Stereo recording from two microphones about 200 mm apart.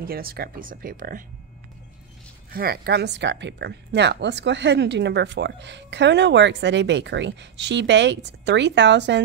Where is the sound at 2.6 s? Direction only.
55° right (ahead or behind).